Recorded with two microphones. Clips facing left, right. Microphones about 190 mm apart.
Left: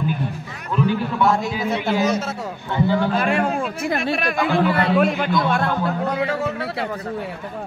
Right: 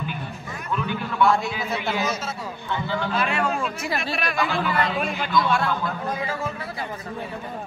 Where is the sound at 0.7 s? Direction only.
40° left (ahead or behind).